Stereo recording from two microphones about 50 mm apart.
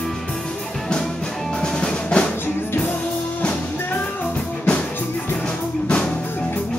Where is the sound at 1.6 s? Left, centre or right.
Centre.